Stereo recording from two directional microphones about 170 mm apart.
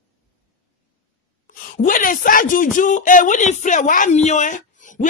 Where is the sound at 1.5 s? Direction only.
55° left (ahead or behind).